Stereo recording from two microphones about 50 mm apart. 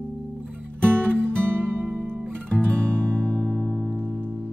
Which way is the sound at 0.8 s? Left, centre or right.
Right.